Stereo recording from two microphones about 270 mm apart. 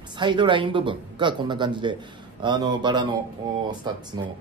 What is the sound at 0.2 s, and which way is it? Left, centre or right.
A man's voice, centre.